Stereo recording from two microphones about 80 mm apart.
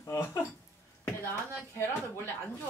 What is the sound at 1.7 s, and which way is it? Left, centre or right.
Speech, left.